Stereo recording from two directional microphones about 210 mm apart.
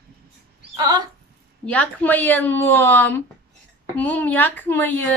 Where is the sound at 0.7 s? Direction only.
20° right (ahead or behind).